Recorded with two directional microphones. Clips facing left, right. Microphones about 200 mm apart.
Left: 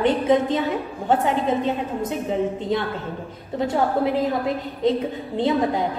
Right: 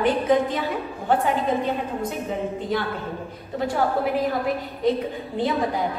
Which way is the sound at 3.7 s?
25° left (ahead or behind).